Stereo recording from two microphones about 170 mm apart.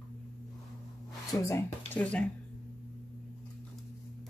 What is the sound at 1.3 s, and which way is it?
Speech, 15° left (ahead or behind).